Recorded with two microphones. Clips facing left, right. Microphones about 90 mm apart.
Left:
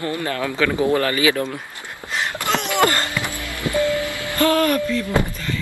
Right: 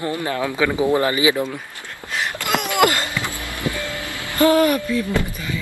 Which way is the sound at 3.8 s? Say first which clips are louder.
Left 8 dB; 20° left (ahead or behind).